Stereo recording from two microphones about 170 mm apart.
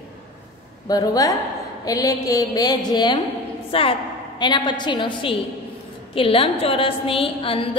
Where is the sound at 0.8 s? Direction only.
20° left (ahead or behind).